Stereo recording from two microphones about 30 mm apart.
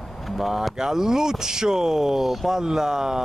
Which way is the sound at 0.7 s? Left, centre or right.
Centre.